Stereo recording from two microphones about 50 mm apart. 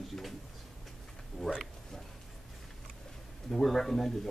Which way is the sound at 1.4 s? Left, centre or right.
Centre.